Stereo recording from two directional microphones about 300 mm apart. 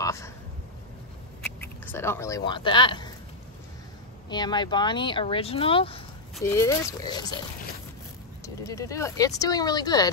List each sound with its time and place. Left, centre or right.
0.0 s a sound: centre
1.4 s speech: centre
4.3 s speech: centre
8.6 s speech: centre